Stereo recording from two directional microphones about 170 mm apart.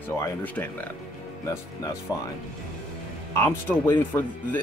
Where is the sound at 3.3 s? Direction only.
15° left (ahead or behind).